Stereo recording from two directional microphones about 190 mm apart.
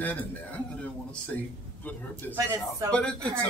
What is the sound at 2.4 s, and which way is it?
Speech, 20° right (ahead or behind).